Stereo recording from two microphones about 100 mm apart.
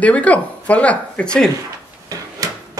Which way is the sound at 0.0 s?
15° left (ahead or behind).